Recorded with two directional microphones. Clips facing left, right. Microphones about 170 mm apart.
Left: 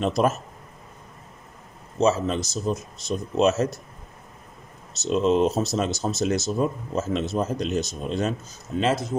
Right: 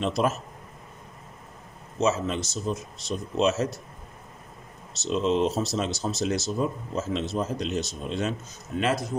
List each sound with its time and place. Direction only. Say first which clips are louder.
0.0 s speech: left 3 dB; 45° left (ahead or behind)
2.0 s speech: left 4 dB; 35° left (ahead or behind)
5.0 s speech: left 4 dB; 45° left (ahead or behind)
8.7 s speech: left 3 dB; 25° left (ahead or behind)